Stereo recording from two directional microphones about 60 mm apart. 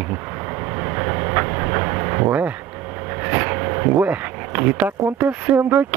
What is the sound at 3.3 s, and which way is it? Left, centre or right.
Vehicle, right.